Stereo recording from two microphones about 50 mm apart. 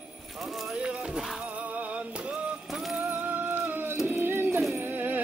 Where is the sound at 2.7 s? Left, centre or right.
Centre.